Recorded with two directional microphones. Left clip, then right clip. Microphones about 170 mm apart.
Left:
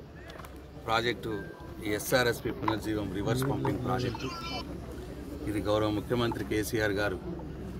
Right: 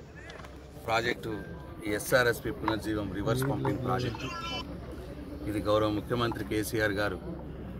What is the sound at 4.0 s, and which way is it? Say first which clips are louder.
Speech: even; 25° right (ahead or behind).